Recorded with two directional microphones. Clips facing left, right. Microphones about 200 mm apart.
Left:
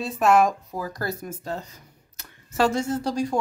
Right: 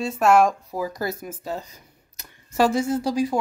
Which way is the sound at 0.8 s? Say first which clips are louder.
Right 5 dB; 10° right (ahead or behind).